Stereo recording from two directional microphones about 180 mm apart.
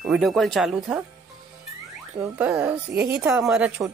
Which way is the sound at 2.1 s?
10° right (ahead or behind).